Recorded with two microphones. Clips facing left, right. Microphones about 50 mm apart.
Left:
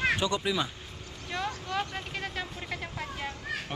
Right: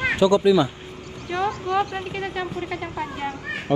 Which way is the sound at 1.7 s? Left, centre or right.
Centre.